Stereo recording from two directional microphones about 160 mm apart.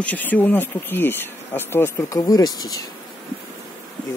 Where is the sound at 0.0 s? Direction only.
10° left (ahead or behind).